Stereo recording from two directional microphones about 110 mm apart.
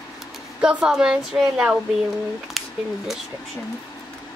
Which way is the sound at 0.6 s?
5° right (ahead or behind).